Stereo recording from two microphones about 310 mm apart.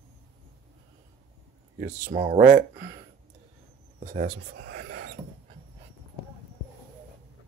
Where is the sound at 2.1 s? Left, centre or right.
Centre.